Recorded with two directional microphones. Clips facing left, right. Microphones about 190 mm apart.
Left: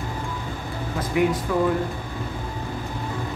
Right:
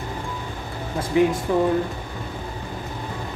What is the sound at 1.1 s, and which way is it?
Speech, 25° right (ahead or behind).